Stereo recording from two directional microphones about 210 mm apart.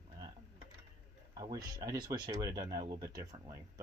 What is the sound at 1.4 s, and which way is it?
Speech, 20° right (ahead or behind).